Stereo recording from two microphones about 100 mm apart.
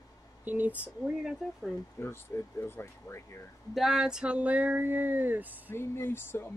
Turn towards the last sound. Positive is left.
turn(degrees=25)  # may be behind; listen again after turning